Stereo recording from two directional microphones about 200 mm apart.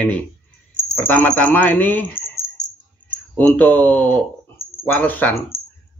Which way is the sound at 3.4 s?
10° left (ahead or behind).